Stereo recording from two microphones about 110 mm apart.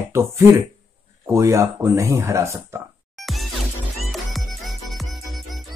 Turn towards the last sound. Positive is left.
turn(degrees=0)  # may be behind; listen again after turning